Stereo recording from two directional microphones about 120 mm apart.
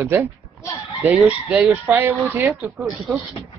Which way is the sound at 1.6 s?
15° right (ahead or behind).